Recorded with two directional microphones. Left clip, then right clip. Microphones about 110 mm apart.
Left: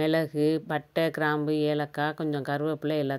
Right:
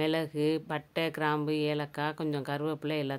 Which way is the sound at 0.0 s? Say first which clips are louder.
Left 4 dB; 35° left (ahead or behind).